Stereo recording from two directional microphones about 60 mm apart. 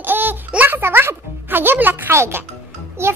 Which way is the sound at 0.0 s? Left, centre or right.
Right.